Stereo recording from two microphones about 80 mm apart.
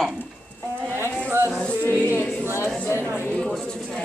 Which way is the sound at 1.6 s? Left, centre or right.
Centre.